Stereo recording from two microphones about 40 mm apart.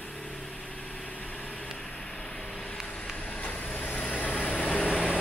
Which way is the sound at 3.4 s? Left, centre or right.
Left.